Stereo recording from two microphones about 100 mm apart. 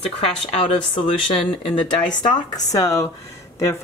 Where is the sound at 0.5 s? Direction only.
65° left (ahead or behind).